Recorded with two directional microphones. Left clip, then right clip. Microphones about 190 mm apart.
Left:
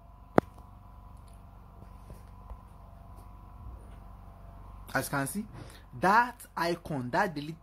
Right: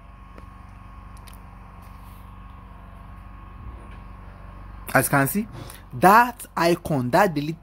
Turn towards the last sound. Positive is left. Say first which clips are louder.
# right 10 dB
turn(degrees=-20)  # may be behind; listen again after turning